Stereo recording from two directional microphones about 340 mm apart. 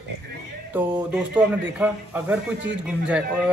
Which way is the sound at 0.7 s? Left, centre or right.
Centre.